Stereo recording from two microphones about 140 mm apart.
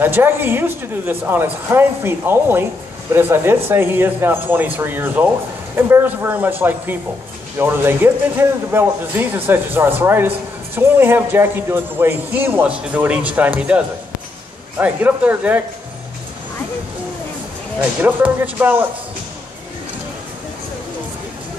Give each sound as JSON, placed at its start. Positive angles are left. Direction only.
{"t": 0.0, "sound": "a man's voice", "side_deg": -15}
{"t": 17.7, "sound": "a man's voice", "side_deg": -10}